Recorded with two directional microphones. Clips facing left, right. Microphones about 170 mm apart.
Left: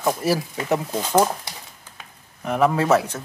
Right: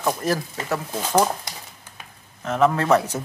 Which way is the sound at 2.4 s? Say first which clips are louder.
Even; 10° left (ahead or behind).